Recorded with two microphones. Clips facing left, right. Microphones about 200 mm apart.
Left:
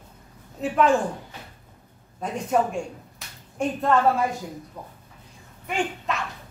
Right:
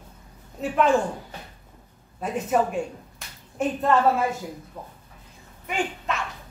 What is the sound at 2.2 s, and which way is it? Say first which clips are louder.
Speech: even; 5° right (ahead or behind).